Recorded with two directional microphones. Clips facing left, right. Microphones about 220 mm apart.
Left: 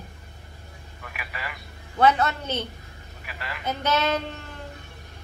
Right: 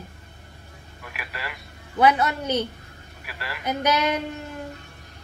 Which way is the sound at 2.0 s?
10° right (ahead or behind).